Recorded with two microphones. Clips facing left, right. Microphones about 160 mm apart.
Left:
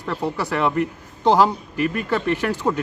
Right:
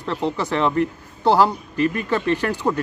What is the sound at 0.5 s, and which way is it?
A man's voice, 15° left (ahead or behind).